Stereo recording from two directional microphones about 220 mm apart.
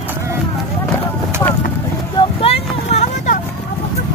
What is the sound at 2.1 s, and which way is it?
Vehicle, 25° left (ahead or behind).